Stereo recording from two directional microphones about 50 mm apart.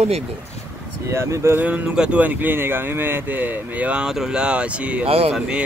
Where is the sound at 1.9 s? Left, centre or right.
Centre.